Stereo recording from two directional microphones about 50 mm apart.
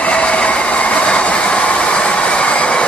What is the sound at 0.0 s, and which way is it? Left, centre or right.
Vehicle, left.